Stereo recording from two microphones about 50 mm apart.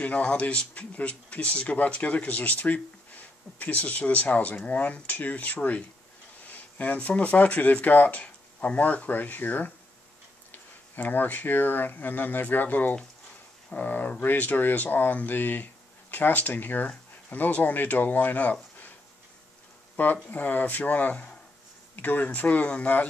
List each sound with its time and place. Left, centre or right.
0.0 s speech: left
20.2 s speech: left